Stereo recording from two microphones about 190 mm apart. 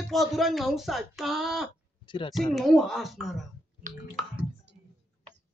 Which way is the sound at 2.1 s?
25° left (ahead or behind).